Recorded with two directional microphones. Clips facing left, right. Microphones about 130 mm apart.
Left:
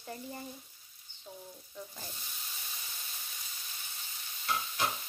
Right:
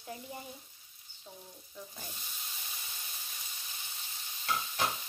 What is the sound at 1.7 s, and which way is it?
Sizzle, centre (ahead or behind).